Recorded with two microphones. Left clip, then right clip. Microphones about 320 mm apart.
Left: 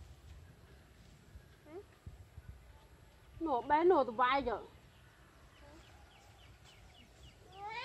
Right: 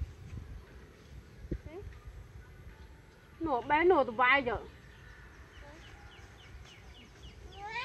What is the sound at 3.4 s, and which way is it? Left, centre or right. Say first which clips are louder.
A woman's voice: right 3 dB; centre.